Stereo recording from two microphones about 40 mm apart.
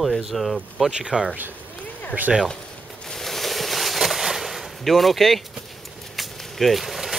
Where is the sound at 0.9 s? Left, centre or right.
Centre.